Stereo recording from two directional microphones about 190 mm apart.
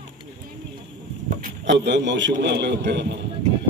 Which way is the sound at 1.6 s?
65° right (ahead or behind).